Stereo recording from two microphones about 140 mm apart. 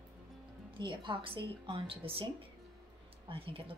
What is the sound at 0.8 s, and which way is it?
A woman's voice, 35° right (ahead or behind).